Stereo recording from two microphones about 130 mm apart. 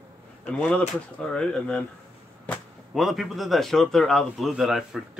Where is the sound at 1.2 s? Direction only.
5° left (ahead or behind).